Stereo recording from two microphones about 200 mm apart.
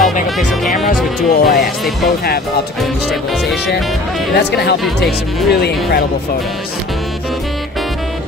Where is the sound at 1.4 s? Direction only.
50° left (ahead or behind).